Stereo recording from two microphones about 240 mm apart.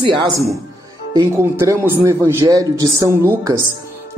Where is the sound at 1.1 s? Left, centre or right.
Centre.